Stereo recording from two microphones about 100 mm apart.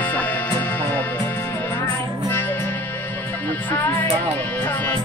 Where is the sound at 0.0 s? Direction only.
15° left (ahead or behind).